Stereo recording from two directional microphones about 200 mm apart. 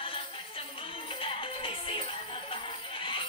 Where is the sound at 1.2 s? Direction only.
25° left (ahead or behind).